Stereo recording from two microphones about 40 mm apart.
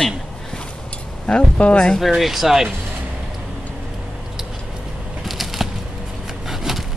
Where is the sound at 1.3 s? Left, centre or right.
Centre.